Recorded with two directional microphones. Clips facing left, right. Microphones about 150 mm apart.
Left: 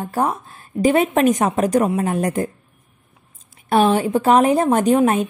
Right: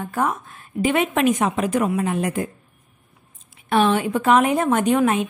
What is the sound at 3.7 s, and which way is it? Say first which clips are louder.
A woman's voice: left 3 dB; 35° left (ahead or behind).